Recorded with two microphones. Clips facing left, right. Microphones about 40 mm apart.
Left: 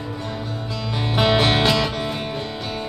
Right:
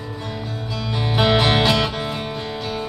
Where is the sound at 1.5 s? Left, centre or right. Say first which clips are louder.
Right 1 dB; right.